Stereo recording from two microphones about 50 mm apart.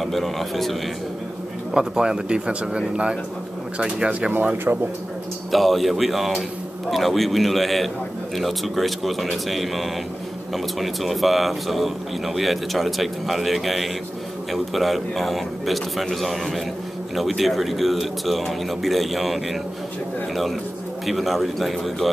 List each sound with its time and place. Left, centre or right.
0.0 s a man's voice: centre
1.7 s a man's voice: centre
4.7 s speech: right
5.5 s a man's voice: centre
21.0 s a man's voice: centre